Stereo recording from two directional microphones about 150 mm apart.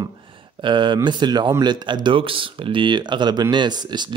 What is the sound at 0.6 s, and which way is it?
Speech, 30° right (ahead or behind).